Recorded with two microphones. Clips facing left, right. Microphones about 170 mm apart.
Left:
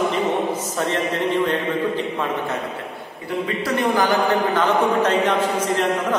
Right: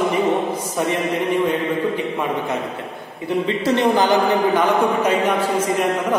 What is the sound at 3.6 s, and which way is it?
Speech, 25° right (ahead or behind).